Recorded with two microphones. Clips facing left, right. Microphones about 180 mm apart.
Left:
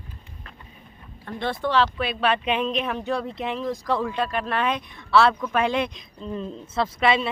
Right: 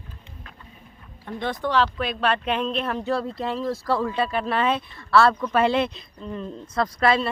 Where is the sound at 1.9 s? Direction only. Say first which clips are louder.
Even; 10° left (ahead or behind).